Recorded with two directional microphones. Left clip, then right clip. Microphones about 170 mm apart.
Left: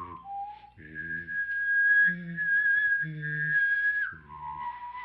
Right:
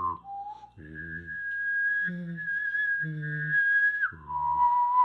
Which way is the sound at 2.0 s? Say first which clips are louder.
Left 7 dB; 30° right (ahead or behind).